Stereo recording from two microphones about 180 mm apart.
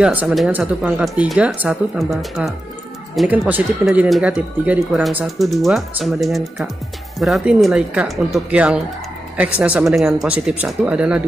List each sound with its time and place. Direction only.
0.0 s speech: 5° right (ahead or behind)